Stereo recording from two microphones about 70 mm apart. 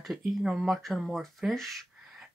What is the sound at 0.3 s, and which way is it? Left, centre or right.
Speech, centre.